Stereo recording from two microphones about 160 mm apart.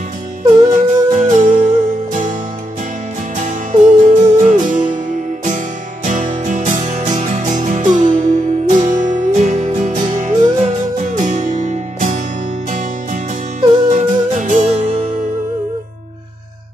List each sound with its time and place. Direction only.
0.7 s music: 50° right (ahead or behind)
3.3 s music: 55° right (ahead or behind)
6.0 s music: 50° right (ahead or behind)